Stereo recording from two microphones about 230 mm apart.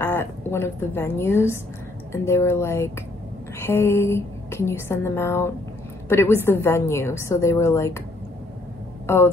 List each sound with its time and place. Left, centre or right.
0.0 s a woman's voice: centre
9.0 s speech: centre